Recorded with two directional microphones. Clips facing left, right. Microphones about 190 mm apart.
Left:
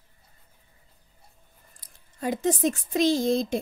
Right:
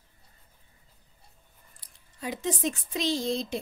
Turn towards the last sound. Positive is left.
turn(degrees=50)  # may be behind; listen again after turning